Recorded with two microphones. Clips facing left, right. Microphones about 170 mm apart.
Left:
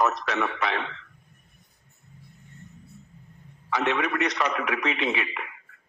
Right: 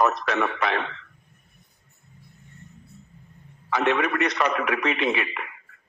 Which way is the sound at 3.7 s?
55° right (ahead or behind).